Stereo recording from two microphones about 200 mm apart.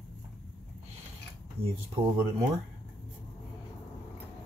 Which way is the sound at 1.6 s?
50° right (ahead or behind).